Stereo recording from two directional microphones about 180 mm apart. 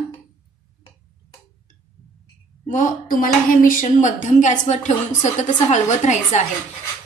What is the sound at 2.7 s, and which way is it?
A woman's voice, 50° left (ahead or behind).